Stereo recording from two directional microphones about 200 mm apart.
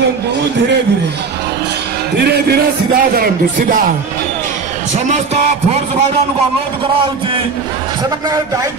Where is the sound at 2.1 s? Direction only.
55° right (ahead or behind).